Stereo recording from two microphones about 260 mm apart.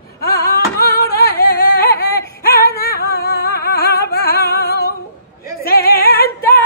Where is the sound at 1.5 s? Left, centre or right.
Left.